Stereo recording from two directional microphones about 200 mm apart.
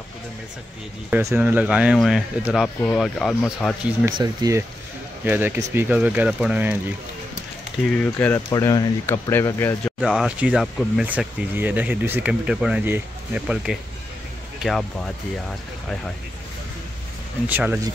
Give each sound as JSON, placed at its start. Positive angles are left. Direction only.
{"t": 1.1, "sound": "speech", "side_deg": -10}
{"t": 4.1, "sound": "speech", "side_deg": -20}
{"t": 8.0, "sound": "speech", "side_deg": 10}
{"t": 9.9, "sound": "speech", "side_deg": -5}
{"t": 17.5, "sound": "speech", "side_deg": -10}